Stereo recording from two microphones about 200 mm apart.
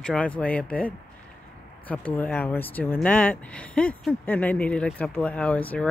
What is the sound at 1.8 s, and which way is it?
Speech, 10° left (ahead or behind).